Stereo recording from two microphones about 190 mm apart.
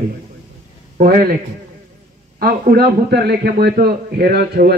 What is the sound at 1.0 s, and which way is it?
Speech, 50° right (ahead or behind).